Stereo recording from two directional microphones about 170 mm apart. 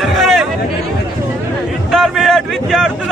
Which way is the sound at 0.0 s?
Centre (ahead or behind).